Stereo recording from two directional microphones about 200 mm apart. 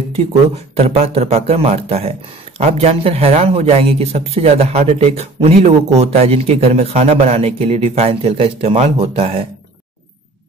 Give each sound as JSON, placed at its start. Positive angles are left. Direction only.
{"t": 0.1, "sound": "speech", "side_deg": -30}